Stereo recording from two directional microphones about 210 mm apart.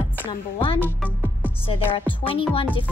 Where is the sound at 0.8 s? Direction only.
10° left (ahead or behind).